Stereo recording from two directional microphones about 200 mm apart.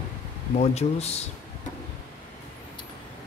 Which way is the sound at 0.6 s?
35° left (ahead or behind).